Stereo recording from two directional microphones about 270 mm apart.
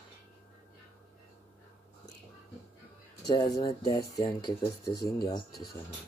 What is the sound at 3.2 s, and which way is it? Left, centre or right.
Speech, centre.